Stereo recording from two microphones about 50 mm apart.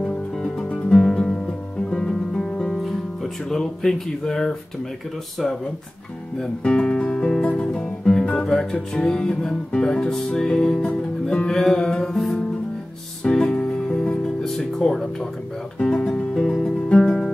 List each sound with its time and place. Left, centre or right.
0.0 s music: centre
2.8 s speech: centre
6.3 s speech: centre
8.3 s music: centre
14.4 s speech: centre
15.8 s music: centre